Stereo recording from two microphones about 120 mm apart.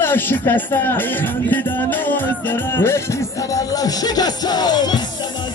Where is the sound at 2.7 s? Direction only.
20° left (ahead or behind).